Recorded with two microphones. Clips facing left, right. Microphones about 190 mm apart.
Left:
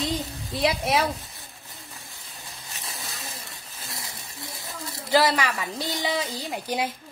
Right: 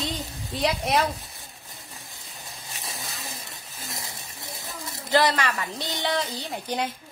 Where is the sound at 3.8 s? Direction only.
20° right (ahead or behind).